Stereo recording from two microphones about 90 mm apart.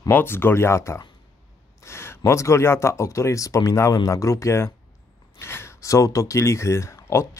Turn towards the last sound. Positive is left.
turn(degrees=30)  # may be behind; listen again after turning